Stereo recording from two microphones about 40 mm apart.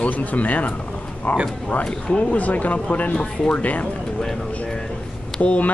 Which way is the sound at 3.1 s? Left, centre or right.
Left.